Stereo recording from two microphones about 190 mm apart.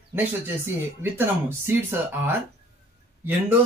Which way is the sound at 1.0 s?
10° right (ahead or behind).